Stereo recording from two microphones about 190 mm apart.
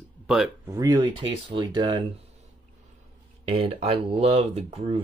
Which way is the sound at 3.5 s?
30° right (ahead or behind).